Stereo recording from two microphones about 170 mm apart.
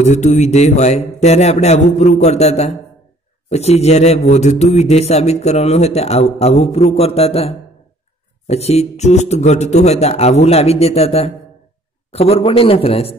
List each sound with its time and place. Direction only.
0.0 s a man's voice: 45° left (ahead or behind)